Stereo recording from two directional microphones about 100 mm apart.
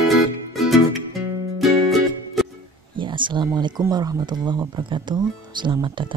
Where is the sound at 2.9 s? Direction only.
55° right (ahead or behind).